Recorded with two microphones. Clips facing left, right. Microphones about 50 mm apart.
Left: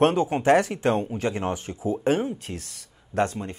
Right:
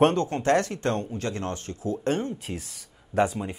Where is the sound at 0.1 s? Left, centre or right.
Centre.